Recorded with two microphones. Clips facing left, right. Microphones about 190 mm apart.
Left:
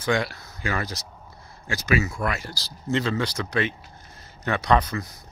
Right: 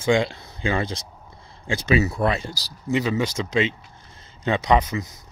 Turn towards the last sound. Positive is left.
turn(degrees=-20)  # may be behind; listen again after turning